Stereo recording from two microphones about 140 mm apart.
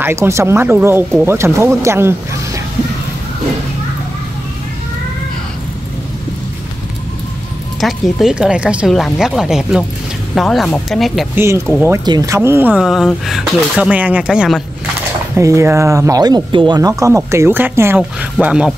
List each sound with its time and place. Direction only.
0.0 s speech: 20° right (ahead or behind)
7.8 s speech: 5° right (ahead or behind)
11.3 s speech: 20° right (ahead or behind)
12.4 s speech: 15° right (ahead or behind)
15.3 s speech: 20° right (ahead or behind)